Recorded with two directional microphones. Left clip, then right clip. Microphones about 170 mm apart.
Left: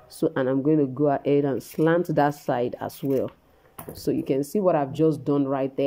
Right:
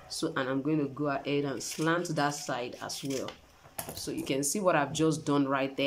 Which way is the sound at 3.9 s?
35° left (ahead or behind).